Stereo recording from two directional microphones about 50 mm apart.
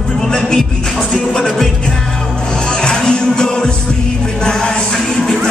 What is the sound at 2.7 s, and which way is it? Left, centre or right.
Music, centre.